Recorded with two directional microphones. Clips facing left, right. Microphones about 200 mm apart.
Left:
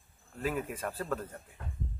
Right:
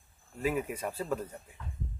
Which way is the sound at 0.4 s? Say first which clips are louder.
Right 2 dB; 5° right (ahead or behind).